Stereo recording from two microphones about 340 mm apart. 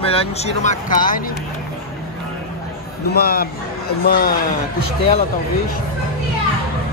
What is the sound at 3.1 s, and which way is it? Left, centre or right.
Speech, left.